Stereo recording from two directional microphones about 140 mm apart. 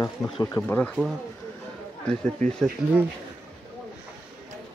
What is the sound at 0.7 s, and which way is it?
Speech, 10° left (ahead or behind).